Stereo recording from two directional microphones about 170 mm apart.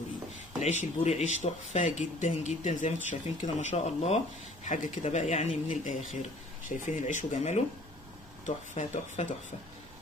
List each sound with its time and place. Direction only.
0.6 s speech: 40° left (ahead or behind)